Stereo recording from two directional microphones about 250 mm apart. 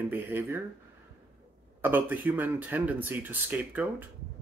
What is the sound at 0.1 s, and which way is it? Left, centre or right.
Speech, centre.